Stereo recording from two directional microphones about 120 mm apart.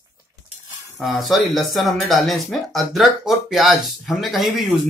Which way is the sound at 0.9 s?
Centre (ahead or behind).